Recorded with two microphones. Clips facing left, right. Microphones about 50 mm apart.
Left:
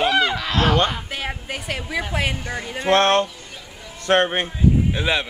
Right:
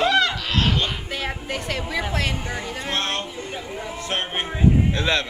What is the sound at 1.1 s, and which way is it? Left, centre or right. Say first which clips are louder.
A woman's voice: right 1 dB; centre.